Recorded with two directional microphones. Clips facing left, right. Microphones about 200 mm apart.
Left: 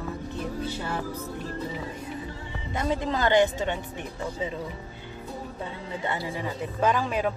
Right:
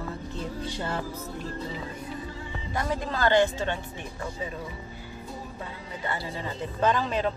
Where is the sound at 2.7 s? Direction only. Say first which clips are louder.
Left 3 dB; 20° left (ahead or behind).